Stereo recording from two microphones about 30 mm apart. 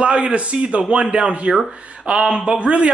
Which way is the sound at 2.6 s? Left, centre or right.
Right.